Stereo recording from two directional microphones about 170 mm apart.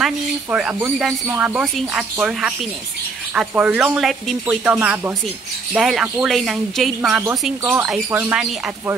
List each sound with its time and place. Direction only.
0.0 s speech: 5° right (ahead or behind)